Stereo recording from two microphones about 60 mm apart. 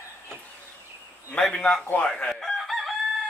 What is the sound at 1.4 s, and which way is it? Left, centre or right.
Speech, centre.